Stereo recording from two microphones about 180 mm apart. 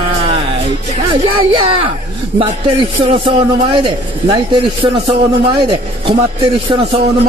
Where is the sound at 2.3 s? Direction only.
30° right (ahead or behind).